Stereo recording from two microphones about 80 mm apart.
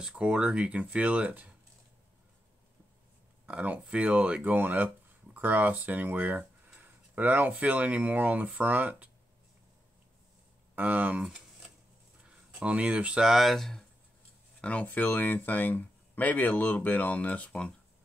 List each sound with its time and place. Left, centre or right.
0.0 s speech: centre
3.4 s speech: centre
10.8 s speech: centre
12.6 s speech: centre
14.6 s speech: centre